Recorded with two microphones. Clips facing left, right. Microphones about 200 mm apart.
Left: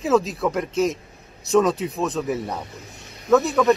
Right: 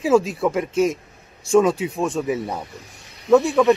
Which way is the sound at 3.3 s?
10° right (ahead or behind).